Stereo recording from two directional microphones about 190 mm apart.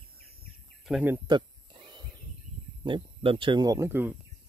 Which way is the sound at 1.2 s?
25° right (ahead or behind).